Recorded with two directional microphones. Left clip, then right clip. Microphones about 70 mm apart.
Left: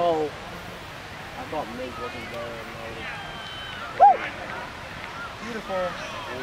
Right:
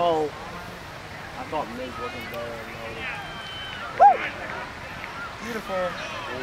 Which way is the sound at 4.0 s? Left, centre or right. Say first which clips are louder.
Even; right.